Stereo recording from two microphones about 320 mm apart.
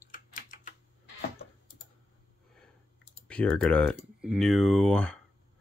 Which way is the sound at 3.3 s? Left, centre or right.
Centre.